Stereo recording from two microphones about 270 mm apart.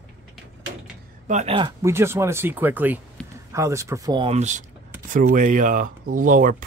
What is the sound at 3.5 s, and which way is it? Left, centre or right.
Speech, centre.